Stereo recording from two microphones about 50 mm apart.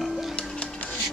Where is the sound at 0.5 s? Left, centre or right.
Left.